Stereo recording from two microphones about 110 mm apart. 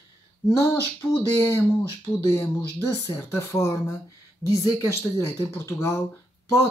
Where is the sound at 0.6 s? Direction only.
20° left (ahead or behind).